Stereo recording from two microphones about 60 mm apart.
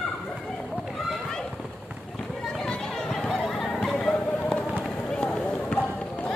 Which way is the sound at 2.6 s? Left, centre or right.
Centre.